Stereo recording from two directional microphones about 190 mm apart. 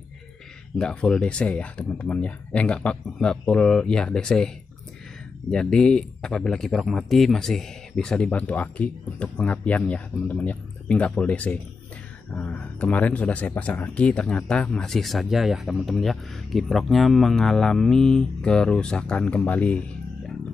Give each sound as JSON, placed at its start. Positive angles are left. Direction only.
{"t": 0.7, "sound": "speech", "side_deg": 5}
{"t": 5.5, "sound": "speech", "side_deg": 5}